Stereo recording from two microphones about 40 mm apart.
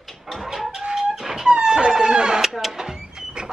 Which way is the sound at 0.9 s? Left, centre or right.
Centre.